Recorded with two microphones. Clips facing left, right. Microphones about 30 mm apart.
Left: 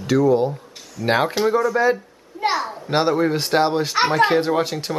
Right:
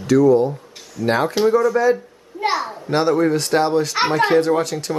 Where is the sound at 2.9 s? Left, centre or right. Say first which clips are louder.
Right 2 dB; centre.